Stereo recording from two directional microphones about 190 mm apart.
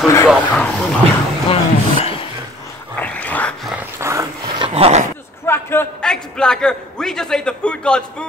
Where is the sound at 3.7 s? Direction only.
10° right (ahead or behind); by 5.0 s 30° right (ahead or behind).